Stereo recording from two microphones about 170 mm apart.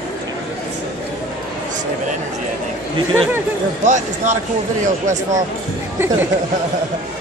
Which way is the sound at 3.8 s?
45° right (ahead or behind).